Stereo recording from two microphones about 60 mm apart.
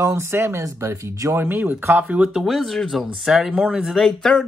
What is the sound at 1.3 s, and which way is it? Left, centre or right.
Speech, right.